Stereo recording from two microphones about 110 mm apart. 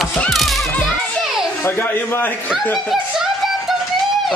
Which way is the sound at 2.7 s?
Centre (ahead or behind).